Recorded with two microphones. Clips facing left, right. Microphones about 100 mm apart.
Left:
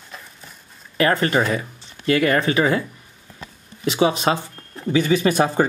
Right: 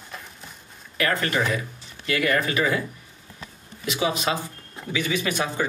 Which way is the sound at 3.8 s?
30° left (ahead or behind).